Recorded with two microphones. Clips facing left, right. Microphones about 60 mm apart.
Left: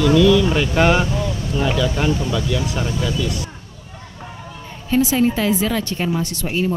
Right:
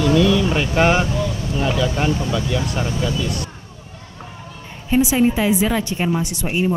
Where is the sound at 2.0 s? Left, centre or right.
Right.